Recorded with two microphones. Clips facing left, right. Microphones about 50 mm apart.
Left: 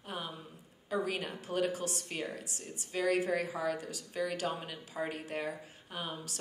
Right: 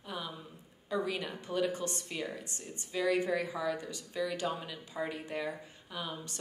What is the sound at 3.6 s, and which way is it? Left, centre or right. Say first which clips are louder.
Speech: even; left.